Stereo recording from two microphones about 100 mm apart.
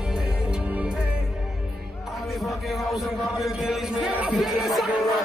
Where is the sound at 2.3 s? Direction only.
Centre (ahead or behind).